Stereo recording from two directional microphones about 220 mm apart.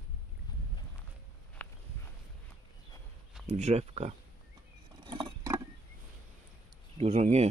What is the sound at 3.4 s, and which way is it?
Speech, 30° right (ahead or behind).